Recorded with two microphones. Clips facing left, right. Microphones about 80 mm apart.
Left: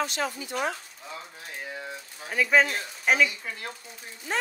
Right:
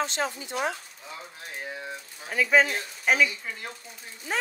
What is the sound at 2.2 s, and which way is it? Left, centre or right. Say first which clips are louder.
Speech: even; centre.